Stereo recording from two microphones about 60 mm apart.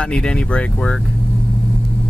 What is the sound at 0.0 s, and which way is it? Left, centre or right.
Speech, centre.